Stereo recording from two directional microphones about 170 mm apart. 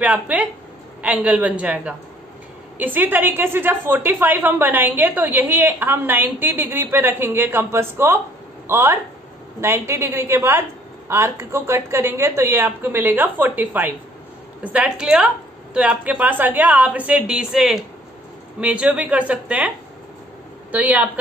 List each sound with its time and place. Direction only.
0.0 s a woman's voice: 10° right (ahead or behind)
20.7 s a woman's voice: 10° right (ahead or behind)